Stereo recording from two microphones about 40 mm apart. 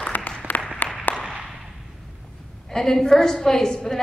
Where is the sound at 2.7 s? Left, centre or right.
Centre.